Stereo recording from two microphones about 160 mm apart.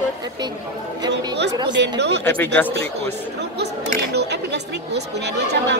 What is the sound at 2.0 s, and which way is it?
Speech, 90° right.